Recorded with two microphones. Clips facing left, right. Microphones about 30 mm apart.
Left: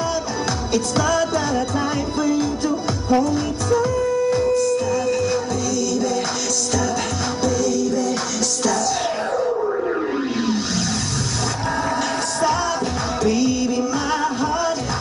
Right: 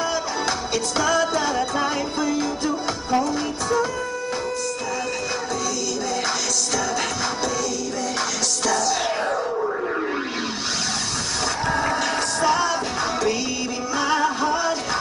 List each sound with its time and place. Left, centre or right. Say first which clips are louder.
0.7 s music: left 2 dB; centre
8.6 s music: left 1 dB; centre
11.7 s music: left 1 dB; centre